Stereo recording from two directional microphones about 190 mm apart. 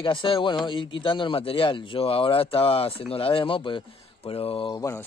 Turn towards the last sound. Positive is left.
turn(degrees=15)  # may be behind; listen again after turning